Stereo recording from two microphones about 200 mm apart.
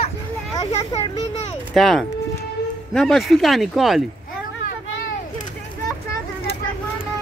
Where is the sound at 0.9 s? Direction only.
30° left (ahead or behind).